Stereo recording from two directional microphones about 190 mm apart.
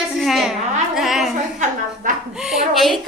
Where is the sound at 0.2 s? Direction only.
Centre (ahead or behind).